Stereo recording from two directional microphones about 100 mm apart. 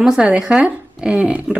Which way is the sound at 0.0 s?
10° right (ahead or behind).